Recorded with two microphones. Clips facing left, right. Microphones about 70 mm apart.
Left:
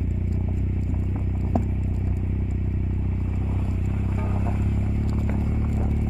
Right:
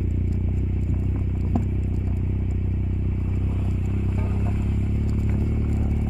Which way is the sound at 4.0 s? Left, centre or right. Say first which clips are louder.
Even; centre.